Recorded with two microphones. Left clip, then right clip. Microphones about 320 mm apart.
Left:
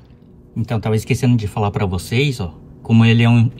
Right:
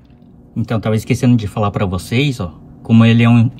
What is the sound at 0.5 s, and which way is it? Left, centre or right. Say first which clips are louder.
Speech: right 3 dB; centre.